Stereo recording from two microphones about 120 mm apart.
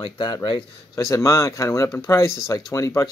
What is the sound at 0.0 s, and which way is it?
Speech, 35° left (ahead or behind).